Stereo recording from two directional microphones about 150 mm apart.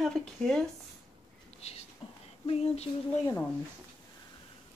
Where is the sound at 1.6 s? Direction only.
45° left (ahead or behind).